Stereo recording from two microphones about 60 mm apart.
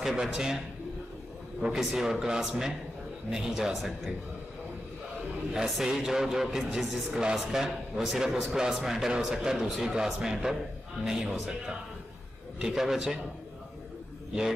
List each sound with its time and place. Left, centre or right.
0.0 s a man's voice: centre
1.6 s a man's voice: centre
5.5 s a man's voice: centre
12.7 s a man's voice: centre